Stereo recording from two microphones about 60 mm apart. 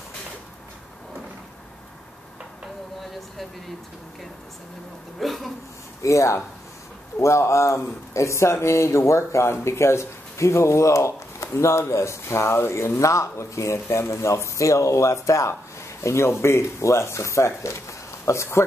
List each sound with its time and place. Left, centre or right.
5.2 s speech: centre
6.0 s speech: left